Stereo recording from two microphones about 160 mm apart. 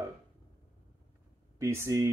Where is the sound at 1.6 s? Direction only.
20° right (ahead or behind).